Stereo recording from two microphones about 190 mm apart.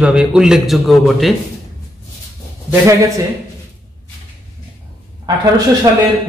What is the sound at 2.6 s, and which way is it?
Speech, 15° right (ahead or behind).